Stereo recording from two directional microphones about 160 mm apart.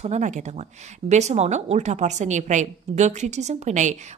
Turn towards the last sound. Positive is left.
turn(degrees=-50)  # may be behind; listen again after turning